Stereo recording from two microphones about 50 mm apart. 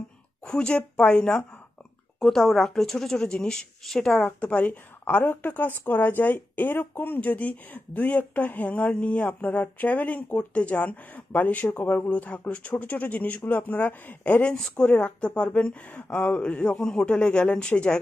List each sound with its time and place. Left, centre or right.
0.5 s a woman's voice: centre
2.1 s a woman's voice: centre; by 4.7 s left
5.0 s a woman's voice: left
14.5 s speech: centre
14.9 s a woman's voice: left
16.7 s a woman's voice: centre